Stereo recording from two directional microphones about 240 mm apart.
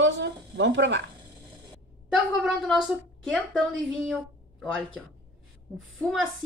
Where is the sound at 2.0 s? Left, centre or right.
Centre.